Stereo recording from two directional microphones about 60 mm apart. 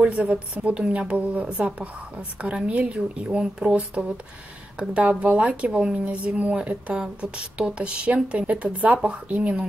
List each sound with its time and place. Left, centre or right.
0.0 s speech: centre